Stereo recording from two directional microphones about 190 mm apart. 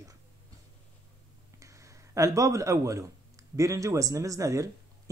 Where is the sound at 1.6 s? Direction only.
15° right (ahead or behind).